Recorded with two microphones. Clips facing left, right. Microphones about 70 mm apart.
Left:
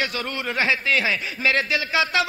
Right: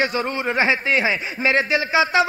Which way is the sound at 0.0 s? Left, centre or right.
Right.